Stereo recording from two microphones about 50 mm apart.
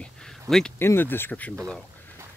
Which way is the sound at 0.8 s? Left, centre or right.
Left.